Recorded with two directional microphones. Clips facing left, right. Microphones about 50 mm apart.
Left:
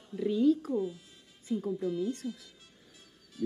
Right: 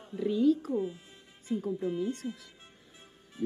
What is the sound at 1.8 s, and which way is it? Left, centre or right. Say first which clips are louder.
Speech: even; right.